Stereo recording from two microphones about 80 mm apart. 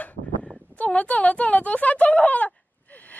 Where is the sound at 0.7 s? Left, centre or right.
Centre.